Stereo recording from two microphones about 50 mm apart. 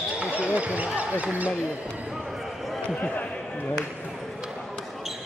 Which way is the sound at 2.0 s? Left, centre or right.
Centre.